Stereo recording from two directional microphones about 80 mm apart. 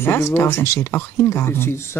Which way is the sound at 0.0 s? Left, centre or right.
Left.